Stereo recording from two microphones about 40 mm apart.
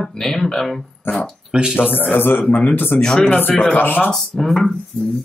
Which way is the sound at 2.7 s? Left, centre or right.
Left.